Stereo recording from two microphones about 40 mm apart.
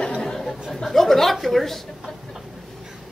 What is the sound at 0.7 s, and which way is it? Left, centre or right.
A woman's voice, centre.